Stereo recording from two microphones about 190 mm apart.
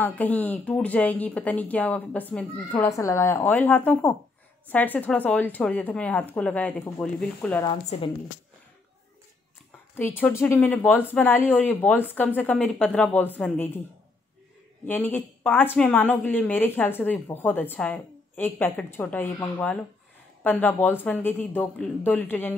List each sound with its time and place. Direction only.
0.0 s a woman's voice: 10° left (ahead or behind)
7.9 s speech: 35° left (ahead or behind)
9.9 s a woman's voice: 10° left (ahead or behind)
14.9 s a woman's voice: 10° left (ahead or behind)